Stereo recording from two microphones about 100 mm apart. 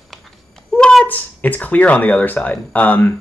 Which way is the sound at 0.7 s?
10° left (ahead or behind).